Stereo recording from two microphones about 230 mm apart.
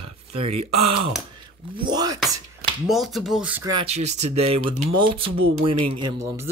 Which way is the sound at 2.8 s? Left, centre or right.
Centre.